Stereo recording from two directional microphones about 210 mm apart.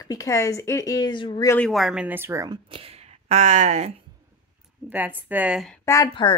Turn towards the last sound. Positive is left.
turn(degrees=20)  # may be behind; listen again after turning